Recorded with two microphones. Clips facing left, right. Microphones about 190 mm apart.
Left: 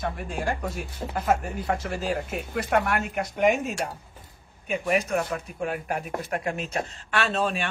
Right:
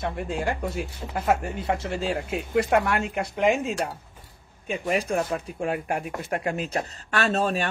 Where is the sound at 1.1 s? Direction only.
25° right (ahead or behind).